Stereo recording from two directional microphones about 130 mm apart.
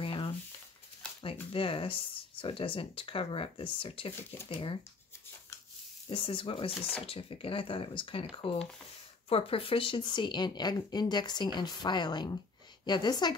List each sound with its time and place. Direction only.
0.0 s a sound: 40° left (ahead or behind)
1.2 s speech: 45° left (ahead or behind)
6.0 s speech: 45° left (ahead or behind)